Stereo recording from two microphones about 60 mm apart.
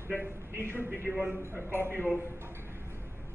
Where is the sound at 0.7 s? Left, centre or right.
Right.